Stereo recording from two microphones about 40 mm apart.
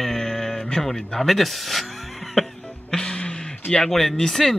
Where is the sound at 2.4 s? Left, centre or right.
Centre.